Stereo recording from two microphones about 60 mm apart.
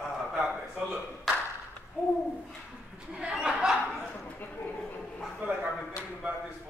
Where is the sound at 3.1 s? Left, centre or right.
Centre.